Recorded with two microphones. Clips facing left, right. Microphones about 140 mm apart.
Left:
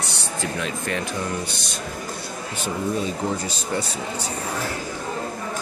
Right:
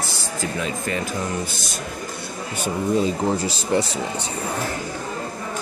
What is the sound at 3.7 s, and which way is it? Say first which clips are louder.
Speech: right 6 dB; 30° right (ahead or behind).